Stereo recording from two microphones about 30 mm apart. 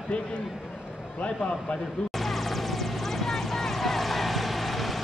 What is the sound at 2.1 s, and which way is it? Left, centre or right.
Vehicle, centre.